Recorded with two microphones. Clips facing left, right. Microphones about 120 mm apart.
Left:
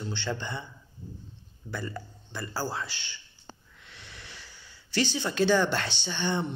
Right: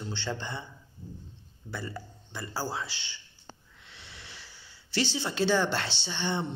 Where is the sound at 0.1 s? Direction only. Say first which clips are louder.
Left 1 dB; 30° right (ahead or behind).